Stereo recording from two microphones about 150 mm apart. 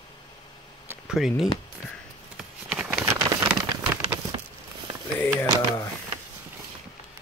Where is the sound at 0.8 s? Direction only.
5° right (ahead or behind).